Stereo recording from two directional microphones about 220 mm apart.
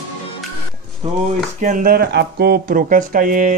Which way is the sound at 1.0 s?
30° right (ahead or behind).